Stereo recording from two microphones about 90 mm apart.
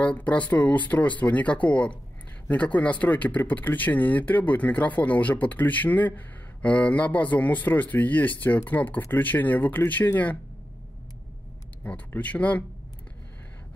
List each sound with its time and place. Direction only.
0.0 s speech: 15° left (ahead or behind)
12.1 s speech: 15° left (ahead or behind)